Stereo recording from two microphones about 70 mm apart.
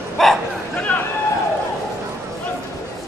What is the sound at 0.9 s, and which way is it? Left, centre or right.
Run, left.